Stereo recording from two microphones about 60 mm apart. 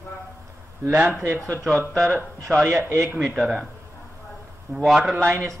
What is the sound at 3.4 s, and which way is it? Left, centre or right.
Speech, centre.